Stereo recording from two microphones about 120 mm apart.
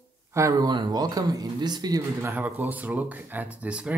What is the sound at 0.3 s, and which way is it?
Speech, 25° right (ahead or behind).